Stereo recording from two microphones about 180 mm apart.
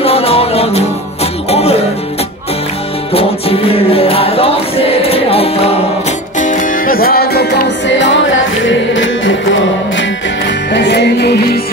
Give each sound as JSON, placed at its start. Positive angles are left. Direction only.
{"t": 0.0, "sound": "music", "side_deg": 35}
{"t": 3.1, "sound": "music", "side_deg": 35}
{"t": 6.3, "sound": "music", "side_deg": 45}
{"t": 10.7, "sound": "music", "side_deg": 75}